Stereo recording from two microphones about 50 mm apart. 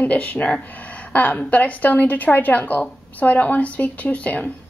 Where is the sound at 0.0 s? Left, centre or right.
Left.